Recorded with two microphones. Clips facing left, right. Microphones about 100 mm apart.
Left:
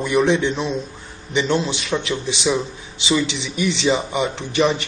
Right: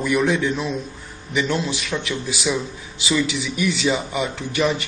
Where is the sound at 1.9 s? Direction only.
15° left (ahead or behind).